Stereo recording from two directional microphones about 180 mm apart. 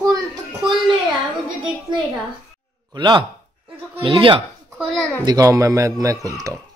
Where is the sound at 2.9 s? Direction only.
25° right (ahead or behind).